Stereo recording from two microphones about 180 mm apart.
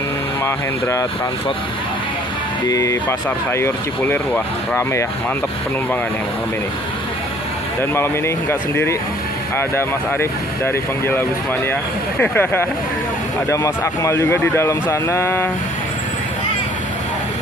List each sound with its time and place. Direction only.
2.7 s speech: 15° left (ahead or behind)
7.9 s speech: 15° left (ahead or behind)